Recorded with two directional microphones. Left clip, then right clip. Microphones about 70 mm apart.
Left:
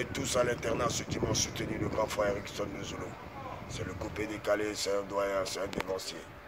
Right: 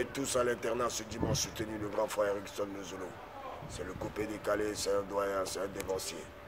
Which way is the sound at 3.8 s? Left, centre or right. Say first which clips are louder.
Left 1 dB; centre.